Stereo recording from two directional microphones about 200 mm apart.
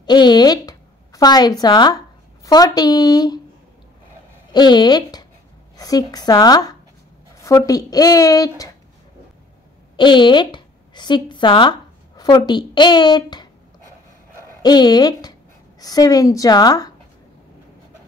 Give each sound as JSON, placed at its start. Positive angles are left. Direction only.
{"t": 0.0, "sound": "a sound", "side_deg": 20}
{"t": 2.4, "sound": "speech", "side_deg": 20}
{"t": 4.5, "sound": "speech", "side_deg": 20}
{"t": 9.9, "sound": "speech", "side_deg": 25}
{"t": 14.6, "sound": "speech", "side_deg": 20}